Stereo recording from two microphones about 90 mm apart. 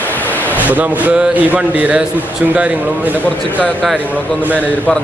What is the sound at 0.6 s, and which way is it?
Speech, 20° right (ahead or behind).